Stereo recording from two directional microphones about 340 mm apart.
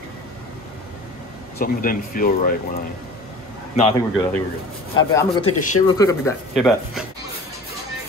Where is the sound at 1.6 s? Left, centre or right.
Left.